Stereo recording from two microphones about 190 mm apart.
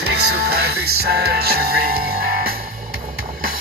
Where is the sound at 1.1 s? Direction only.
55° right (ahead or behind).